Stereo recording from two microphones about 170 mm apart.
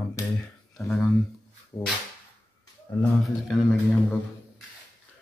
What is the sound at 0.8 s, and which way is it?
Speech, 15° left (ahead or behind).